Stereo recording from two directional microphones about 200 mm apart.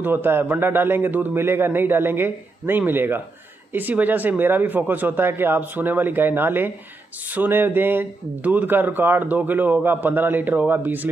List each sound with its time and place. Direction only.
0.0 s a man's voice: 10° right (ahead or behind)